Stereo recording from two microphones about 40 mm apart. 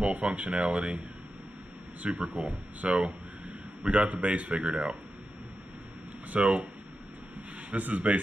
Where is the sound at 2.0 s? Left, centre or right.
Right.